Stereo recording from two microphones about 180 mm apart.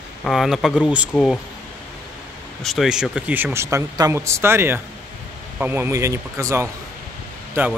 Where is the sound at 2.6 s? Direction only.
Centre (ahead or behind).